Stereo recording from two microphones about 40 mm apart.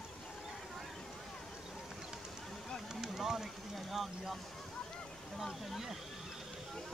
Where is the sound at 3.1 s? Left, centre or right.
Centre.